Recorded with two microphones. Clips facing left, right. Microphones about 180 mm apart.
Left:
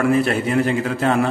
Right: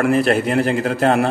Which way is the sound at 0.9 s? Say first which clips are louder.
Right 3 dB; 40° right (ahead or behind).